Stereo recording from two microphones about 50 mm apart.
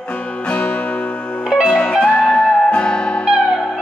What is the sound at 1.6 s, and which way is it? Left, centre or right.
Music, centre.